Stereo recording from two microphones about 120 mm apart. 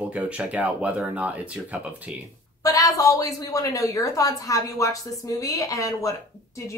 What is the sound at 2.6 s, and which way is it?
A woman's voice, 30° left (ahead or behind).